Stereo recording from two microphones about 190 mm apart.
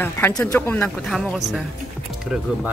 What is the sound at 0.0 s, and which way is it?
Speech, 10° left (ahead or behind).